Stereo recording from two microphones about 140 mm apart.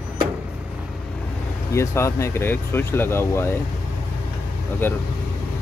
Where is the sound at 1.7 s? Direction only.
20° left (ahead or behind).